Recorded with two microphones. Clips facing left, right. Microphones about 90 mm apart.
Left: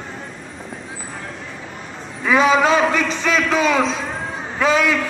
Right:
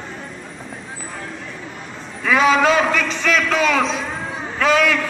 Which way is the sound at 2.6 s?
25° left (ahead or behind).